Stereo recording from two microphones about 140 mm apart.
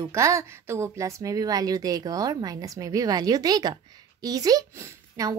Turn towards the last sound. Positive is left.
turn(degrees=-25)  # may be behind; listen again after turning